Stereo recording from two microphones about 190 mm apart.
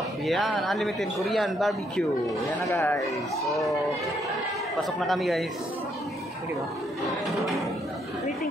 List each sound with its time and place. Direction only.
0.2 s speech: centre (ahead or behind)
2.7 s speech: 15° left (ahead or behind)
3.4 s speech: centre (ahead or behind)
4.7 s speech: centre (ahead or behind)
7.1 s speech: centre (ahead or behind)